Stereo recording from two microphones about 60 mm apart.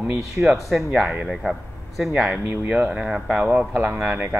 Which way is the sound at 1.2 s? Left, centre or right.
Centre.